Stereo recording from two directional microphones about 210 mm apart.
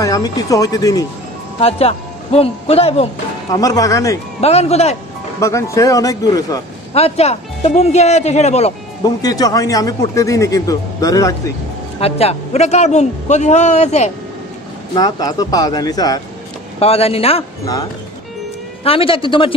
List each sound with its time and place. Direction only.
0.0 s speech: 15° left (ahead or behind)
1.6 s a man's voice: 30° left (ahead or behind)
3.5 s speech: 15° left (ahead or behind)
4.4 s a man's voice: 30° left (ahead or behind)
5.4 s speech: 15° left (ahead or behind)
6.9 s a man's voice: 30° left (ahead or behind)
9.0 s speech: 15° left (ahead or behind)
12.0 s a man's voice: 30° left (ahead or behind)
15.0 s a man's voice: 20° left (ahead or behind)
18.9 s a man's voice: 25° left (ahead or behind)